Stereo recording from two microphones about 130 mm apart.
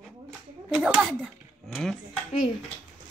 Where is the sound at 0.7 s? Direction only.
5° right (ahead or behind).